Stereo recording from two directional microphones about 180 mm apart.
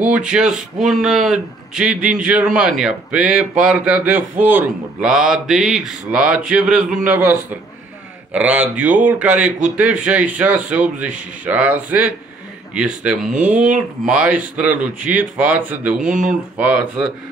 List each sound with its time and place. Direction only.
0.0 s speech: 5° right (ahead or behind)
13.3 s speech: 45° right (ahead or behind)
14.0 s speech: 5° right (ahead or behind)
16.0 s speech: 45° right (ahead or behind)
16.5 s speech: 10° right (ahead or behind)